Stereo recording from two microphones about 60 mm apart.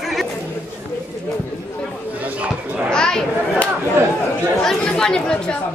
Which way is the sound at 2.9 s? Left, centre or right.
Centre.